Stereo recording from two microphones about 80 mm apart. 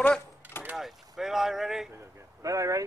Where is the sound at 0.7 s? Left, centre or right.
Centre.